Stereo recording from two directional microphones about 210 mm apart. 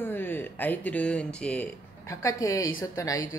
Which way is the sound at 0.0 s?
10° left (ahead or behind).